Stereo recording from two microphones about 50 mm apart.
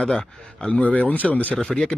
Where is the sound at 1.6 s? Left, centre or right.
Centre.